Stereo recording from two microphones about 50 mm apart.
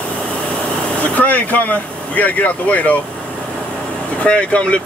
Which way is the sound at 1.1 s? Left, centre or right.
Left.